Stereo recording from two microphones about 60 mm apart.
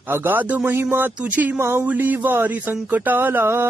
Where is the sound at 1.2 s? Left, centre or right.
Right.